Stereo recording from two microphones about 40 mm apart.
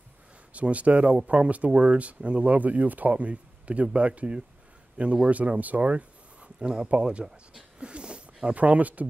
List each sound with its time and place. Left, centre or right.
0.5 s speech: right
7.8 s a sound: right
8.5 s speech: right